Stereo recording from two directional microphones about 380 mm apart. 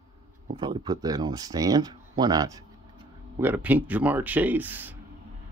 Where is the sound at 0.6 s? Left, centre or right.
Centre.